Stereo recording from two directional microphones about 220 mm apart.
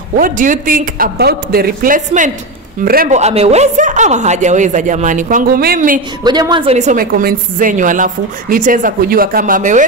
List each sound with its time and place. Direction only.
0.2 s a woman's voice: 40° right (ahead or behind)
6.2 s a woman's voice: 20° right (ahead or behind); by 9.8 s 35° right (ahead or behind)